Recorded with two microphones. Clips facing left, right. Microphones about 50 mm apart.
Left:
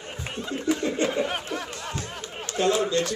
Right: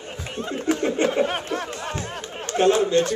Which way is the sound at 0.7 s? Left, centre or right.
Right.